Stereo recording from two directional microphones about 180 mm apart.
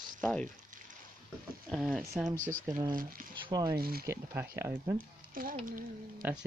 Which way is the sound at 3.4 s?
20° right (ahead or behind).